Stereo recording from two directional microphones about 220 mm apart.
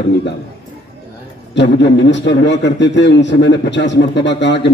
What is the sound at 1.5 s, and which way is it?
A man's voice, 55° left (ahead or behind).